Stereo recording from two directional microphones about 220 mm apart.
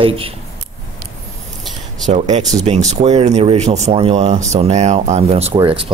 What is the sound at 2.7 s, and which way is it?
Speech, 25° right (ahead or behind).